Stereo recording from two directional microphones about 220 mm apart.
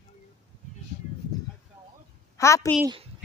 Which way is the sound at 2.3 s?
15° left (ahead or behind).